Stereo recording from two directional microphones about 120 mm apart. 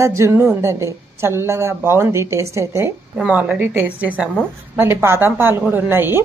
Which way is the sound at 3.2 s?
10° right (ahead or behind).